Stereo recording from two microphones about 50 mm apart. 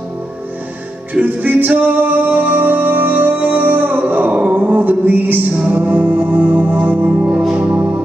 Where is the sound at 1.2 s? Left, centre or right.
Right.